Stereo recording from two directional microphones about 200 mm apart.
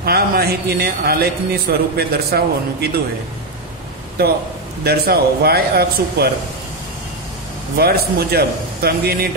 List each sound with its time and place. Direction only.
0.0 s a man's voice: 50° right (ahead or behind)
4.2 s a man's voice: 50° right (ahead or behind)
7.7 s a man's voice: 50° right (ahead or behind)